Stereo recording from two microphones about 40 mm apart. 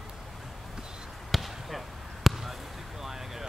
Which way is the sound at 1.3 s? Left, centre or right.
Centre.